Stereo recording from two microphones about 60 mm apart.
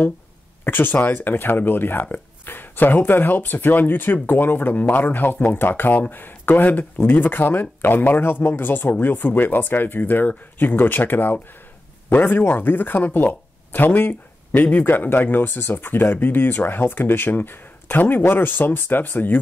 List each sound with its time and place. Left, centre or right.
0.7 s speech: left